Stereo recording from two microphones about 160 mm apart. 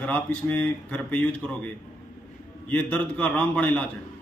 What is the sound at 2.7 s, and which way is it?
Speech, 10° left (ahead or behind).